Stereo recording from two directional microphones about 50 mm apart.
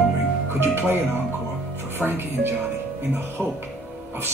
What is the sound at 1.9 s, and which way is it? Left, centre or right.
Speech, right.